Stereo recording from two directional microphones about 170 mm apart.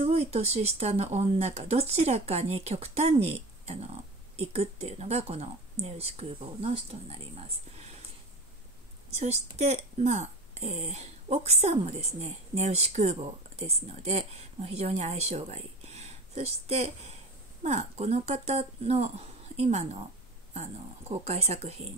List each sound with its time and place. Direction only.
0.0 s speech: 40° right (ahead or behind)
9.1 s speech: 40° right (ahead or behind)